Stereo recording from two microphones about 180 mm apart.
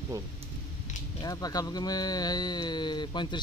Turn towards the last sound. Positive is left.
turn(degrees=25)  # may be behind; listen again after turning